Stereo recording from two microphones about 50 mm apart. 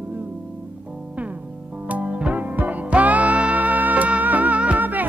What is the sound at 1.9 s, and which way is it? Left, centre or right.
Music, right.